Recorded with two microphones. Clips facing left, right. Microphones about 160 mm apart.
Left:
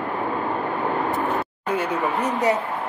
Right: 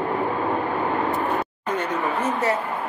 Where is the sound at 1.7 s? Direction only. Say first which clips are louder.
Left 2 dB; 10° left (ahead or behind).